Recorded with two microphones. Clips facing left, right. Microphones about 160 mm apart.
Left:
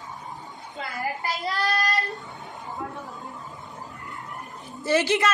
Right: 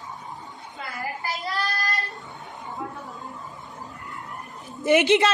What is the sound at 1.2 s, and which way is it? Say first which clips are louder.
Child singing: even; 20° left (ahead or behind).